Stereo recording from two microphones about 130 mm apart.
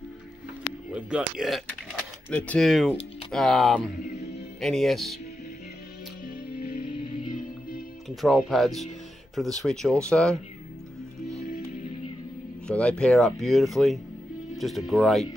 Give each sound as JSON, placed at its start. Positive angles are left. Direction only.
{"t": 0.9, "sound": "speech", "side_deg": -5}
{"t": 2.2, "sound": "speech", "side_deg": 10}
{"t": 6.2, "sound": "music", "side_deg": 90}
{"t": 8.2, "sound": "speech", "side_deg": 0}
{"t": 12.6, "sound": "speech", "side_deg": 10}